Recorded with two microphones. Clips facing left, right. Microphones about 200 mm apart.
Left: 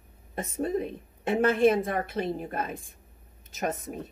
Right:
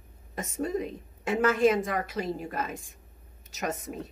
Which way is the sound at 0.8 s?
55° left (ahead or behind).